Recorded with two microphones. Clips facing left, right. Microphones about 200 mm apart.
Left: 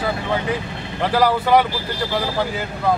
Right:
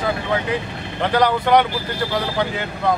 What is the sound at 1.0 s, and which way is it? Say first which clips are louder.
Speech: even; 5° left (ahead or behind).